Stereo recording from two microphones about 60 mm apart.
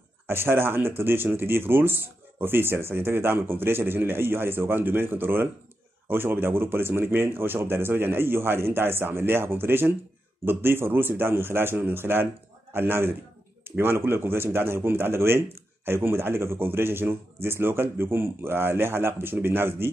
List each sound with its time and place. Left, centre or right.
0.3 s speech: right